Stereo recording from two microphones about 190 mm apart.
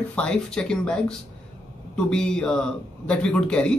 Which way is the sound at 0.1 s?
5° left (ahead or behind).